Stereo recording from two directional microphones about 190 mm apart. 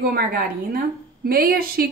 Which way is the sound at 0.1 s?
50° right (ahead or behind).